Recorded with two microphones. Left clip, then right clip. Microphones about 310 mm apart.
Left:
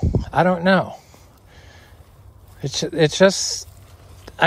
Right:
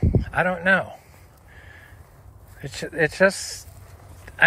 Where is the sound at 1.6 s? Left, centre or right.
Centre.